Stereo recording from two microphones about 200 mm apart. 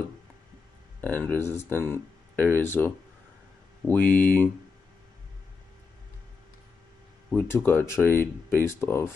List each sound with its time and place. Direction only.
1.0 s speech: 10° left (ahead or behind)
7.2 s speech: 10° left (ahead or behind)